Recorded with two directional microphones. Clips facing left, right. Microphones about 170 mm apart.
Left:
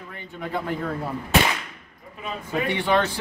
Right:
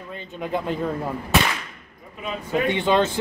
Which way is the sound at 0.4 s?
20° right (ahead or behind).